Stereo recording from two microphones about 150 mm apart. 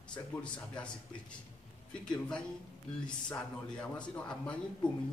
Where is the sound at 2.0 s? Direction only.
5° left (ahead or behind).